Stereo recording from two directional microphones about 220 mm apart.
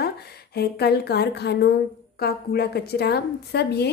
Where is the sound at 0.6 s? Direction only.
45° left (ahead or behind).